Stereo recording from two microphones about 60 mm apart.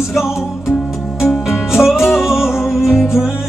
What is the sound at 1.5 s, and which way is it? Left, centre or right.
Music, centre.